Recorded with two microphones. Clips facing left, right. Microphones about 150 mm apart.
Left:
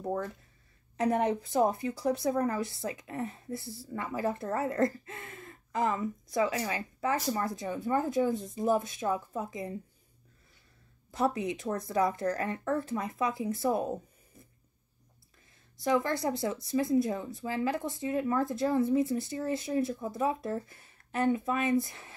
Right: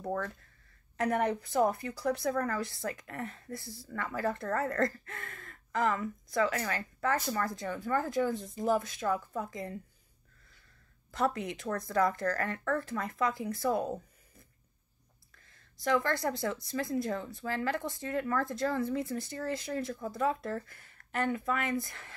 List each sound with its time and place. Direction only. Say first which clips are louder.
0.1 s a woman's voice: even; 15° left (ahead or behind)
11.1 s speech: left 2 dB; 20° left (ahead or behind)
15.8 s a woman's voice: left 1 dB; 15° left (ahead or behind)